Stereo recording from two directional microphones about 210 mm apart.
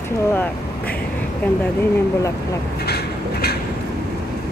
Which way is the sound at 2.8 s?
50° left (ahead or behind).